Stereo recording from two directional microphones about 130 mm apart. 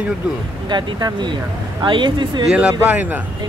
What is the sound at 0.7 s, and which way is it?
Speech, 35° right (ahead or behind).